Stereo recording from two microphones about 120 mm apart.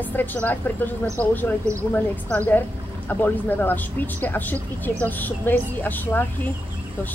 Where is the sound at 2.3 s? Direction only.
15° left (ahead or behind).